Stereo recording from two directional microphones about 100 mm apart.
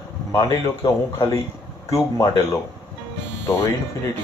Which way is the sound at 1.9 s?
30° left (ahead or behind).